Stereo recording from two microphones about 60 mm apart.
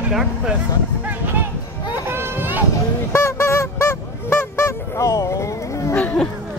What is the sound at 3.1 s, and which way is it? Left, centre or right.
Honk, left.